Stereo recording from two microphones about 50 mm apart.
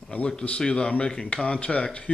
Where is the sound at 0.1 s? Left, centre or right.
Left.